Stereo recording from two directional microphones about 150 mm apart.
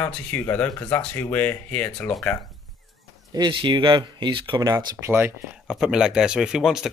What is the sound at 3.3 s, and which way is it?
Speech, 30° right (ahead or behind).